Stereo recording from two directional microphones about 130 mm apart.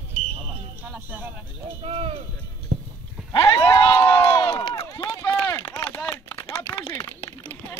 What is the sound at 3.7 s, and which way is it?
Crowd, 35° left (ahead or behind).